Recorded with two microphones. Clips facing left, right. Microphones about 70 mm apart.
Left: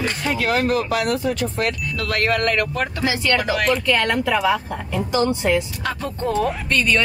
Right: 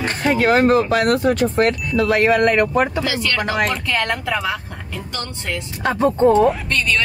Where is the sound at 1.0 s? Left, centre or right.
Right.